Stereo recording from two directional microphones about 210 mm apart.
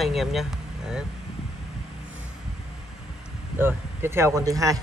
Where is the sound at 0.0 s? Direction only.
Centre (ahead or behind).